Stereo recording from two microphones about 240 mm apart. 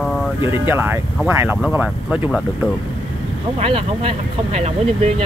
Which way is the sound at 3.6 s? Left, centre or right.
Right.